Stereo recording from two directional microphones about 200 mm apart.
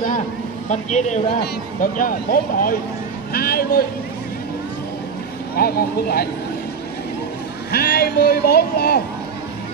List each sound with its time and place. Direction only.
0.7 s speech: 35° left (ahead or behind)
5.6 s speech: 50° left (ahead or behind)
7.7 s speech: 50° left (ahead or behind)